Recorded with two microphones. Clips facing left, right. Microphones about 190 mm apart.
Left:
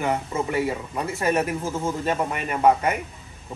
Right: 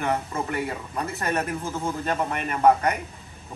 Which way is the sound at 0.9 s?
10° left (ahead or behind).